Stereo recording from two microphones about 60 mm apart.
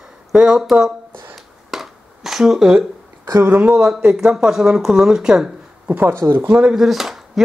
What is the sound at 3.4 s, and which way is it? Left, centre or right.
Speech, right.